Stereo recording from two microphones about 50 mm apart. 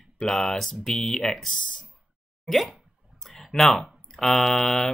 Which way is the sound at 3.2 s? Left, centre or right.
Centre.